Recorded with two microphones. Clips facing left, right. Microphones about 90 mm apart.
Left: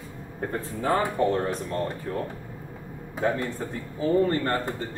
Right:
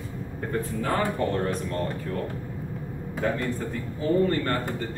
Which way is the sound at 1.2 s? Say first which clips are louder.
Left 3 dB; 20° left (ahead or behind).